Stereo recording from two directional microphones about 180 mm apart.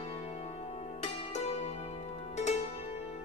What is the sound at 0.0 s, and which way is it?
Music, 35° left (ahead or behind).